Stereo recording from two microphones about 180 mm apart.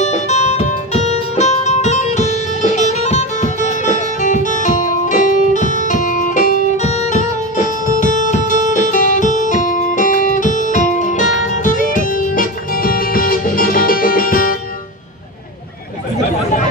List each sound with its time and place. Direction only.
0.0 s music: 40° left (ahead or behind)
8.0 s guitar: 45° left (ahead or behind)